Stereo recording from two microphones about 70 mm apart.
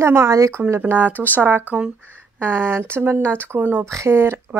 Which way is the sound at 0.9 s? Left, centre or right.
Right.